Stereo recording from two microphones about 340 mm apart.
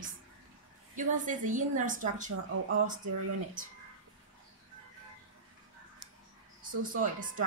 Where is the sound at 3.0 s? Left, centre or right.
Right.